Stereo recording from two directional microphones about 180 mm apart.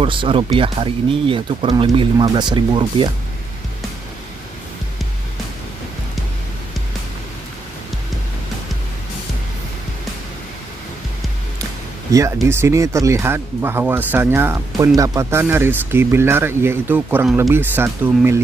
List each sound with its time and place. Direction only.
0.0 s speech: 30° right (ahead or behind)
12.1 s speech: 20° right (ahead or behind)